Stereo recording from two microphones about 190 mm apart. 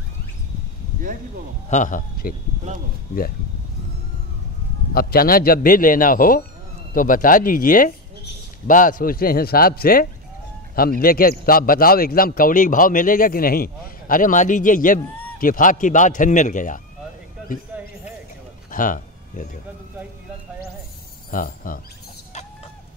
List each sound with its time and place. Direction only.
1.7 s a man's voice: 40° left (ahead or behind)
4.9 s a man's voice: 50° left (ahead or behind)
18.7 s a sound: 45° left (ahead or behind)
21.3 s a man's voice: 45° left (ahead or behind)